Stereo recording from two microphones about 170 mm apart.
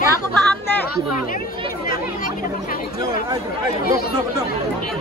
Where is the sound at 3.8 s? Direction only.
65° left (ahead or behind).